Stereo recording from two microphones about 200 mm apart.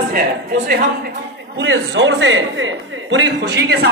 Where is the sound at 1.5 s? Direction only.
65° right (ahead or behind).